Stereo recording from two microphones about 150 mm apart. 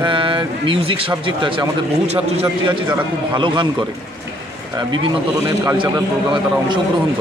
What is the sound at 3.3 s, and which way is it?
Speech, 30° right (ahead or behind).